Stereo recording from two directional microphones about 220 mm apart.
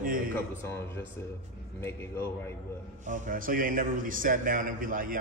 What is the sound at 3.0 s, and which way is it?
A man's voice, 35° right (ahead or behind).